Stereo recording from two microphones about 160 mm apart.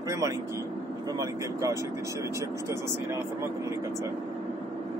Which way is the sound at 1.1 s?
20° right (ahead or behind).